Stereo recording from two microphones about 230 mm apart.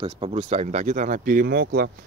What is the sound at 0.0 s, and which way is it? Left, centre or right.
Speech, right.